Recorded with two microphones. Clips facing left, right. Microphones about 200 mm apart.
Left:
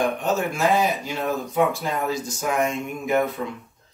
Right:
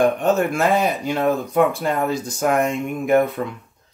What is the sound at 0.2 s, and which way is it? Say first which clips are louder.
Speech: right 4 dB; 60° right (ahead or behind).